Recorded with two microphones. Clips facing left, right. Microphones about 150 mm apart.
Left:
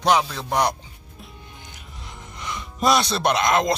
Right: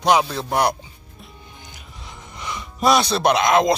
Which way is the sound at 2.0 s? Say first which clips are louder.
Right 1 dB; centre (ahead or behind).